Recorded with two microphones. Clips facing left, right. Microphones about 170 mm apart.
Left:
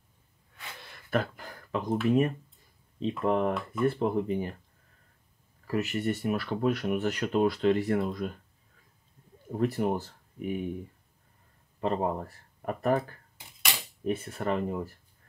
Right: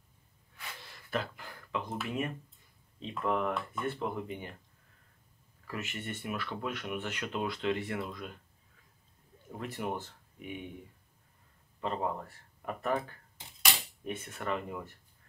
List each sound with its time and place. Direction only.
0.9 s a sound: 50° left (ahead or behind)
2.0 s speech: 40° left (ahead or behind)
5.7 s speech: 40° left (ahead or behind)
9.6 s speech: 40° left (ahead or behind)
11.8 s speech: 40° left (ahead or behind)
14.0 s speech: 35° left (ahead or behind)